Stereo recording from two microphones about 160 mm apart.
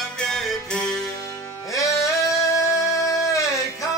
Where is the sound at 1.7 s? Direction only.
20° left (ahead or behind).